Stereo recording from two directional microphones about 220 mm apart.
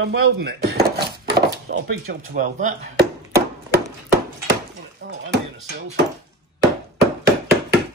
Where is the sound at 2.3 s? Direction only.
35° right (ahead or behind).